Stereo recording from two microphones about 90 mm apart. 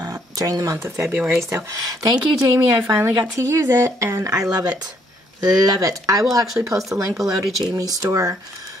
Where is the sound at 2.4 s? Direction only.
35° right (ahead or behind).